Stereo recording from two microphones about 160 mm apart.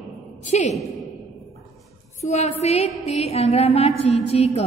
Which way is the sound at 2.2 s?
45° left (ahead or behind).